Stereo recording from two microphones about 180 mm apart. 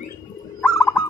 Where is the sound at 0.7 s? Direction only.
15° left (ahead or behind).